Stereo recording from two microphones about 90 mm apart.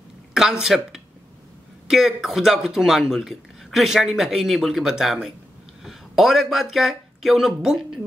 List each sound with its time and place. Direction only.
0.3 s speech: 5° right (ahead or behind)